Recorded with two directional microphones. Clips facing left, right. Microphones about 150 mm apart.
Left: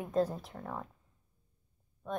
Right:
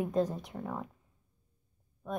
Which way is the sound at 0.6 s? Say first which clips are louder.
Right 4 dB; 10° right (ahead or behind).